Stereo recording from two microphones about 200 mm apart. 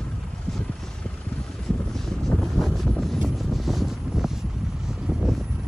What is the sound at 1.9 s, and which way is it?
Vehicle, centre (ahead or behind).